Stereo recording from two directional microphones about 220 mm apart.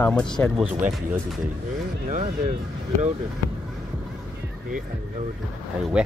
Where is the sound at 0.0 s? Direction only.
5° left (ahead or behind).